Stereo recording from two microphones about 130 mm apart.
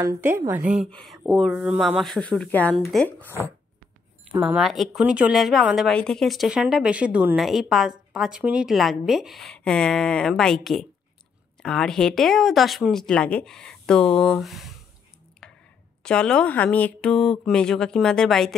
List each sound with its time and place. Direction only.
0.0 s a woman's voice: 15° right (ahead or behind)
0.8 s a woman's voice: 5° left (ahead or behind)
1.8 s speech: 5° left (ahead or behind)
4.4 s speech: 5° right (ahead or behind)
16.0 s speech: 5° left (ahead or behind)